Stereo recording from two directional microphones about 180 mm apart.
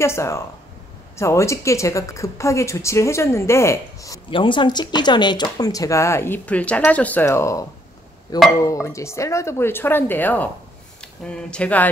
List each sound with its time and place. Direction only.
0.0 s a woman's voice: 15° left (ahead or behind)